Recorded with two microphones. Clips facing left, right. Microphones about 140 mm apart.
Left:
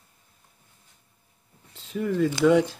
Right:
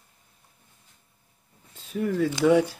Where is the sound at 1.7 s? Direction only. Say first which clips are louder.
Even; 15° right (ahead or behind).